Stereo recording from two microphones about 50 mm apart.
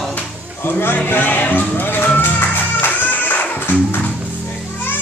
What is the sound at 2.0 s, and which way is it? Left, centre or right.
Music, left.